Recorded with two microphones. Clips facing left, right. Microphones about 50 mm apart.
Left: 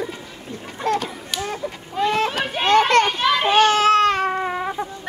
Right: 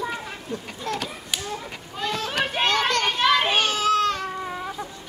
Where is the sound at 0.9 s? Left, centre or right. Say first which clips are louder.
Left 8 dB; left.